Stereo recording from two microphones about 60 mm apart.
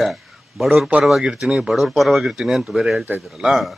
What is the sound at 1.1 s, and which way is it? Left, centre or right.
Speech, centre.